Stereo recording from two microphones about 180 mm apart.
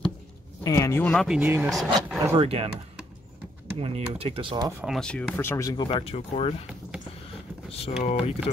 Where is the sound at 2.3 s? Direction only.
35° right (ahead or behind).